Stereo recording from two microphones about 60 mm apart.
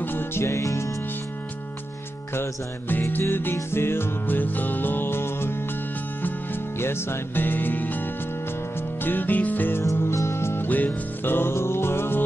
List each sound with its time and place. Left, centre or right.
0.0 s music: left
2.9 s music: left
10.1 s music: left
10.7 s music: left